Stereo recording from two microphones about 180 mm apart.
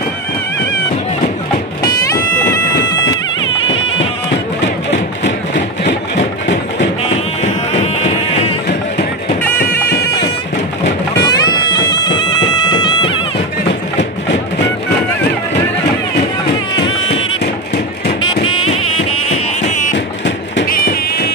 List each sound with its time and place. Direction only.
4.6 s music: 80° left
7.7 s music: 35° left (ahead or behind)
11.2 s music: 25° left (ahead or behind)
18.4 s music: 35° left (ahead or behind)
20.6 s music: 55° left (ahead or behind)